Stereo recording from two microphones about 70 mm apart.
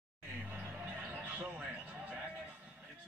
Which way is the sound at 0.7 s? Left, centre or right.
Right.